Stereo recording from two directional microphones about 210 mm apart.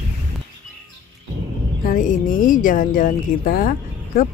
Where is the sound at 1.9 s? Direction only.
40° left (ahead or behind).